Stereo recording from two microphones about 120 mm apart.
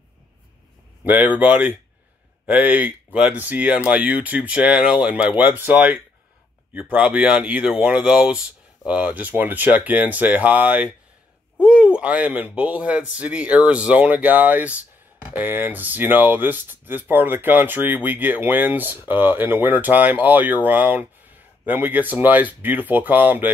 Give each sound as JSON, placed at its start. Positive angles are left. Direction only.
{"t": 1.0, "sound": "speech", "side_deg": -15}